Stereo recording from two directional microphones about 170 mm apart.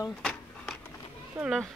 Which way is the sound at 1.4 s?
10° right (ahead or behind).